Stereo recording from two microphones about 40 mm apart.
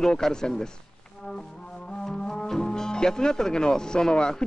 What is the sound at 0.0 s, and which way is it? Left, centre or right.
Speech, centre.